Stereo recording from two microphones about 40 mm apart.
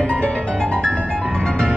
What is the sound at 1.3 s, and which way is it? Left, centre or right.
Music, left.